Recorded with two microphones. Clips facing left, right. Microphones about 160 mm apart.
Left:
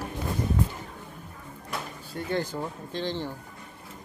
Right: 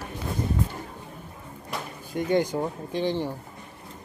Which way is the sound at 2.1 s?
15° right (ahead or behind).